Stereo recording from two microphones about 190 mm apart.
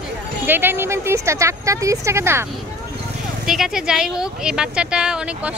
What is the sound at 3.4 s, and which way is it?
Speech, centre (ahead or behind).